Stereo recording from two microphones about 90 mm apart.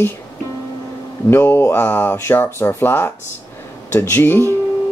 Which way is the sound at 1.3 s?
30° left (ahead or behind).